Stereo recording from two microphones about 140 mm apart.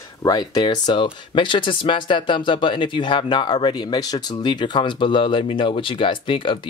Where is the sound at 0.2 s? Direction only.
30° left (ahead or behind).